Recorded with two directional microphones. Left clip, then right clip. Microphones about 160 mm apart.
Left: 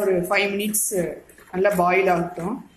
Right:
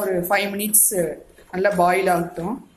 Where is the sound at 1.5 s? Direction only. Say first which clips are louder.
Right 1 dB; 20° right (ahead or behind).